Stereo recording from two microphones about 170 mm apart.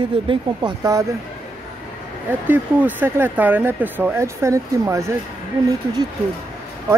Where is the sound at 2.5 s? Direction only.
10° right (ahead or behind).